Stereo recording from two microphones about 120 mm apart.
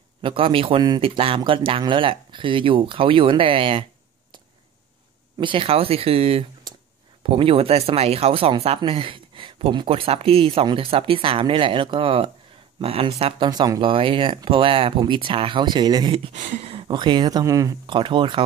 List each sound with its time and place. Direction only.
0.2 s speech: 45° right (ahead or behind)
5.4 s speech: 45° right (ahead or behind)
13.4 s speech: 35° right (ahead or behind)
16.3 s speech: 90° right
16.6 s a sound: 50° right (ahead or behind)
16.9 s speech: 35° right (ahead or behind)
17.8 s speech: 45° right (ahead or behind)